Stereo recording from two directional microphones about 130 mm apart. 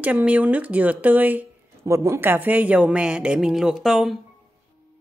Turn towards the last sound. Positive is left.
turn(degrees=0)  # may be behind; listen again after turning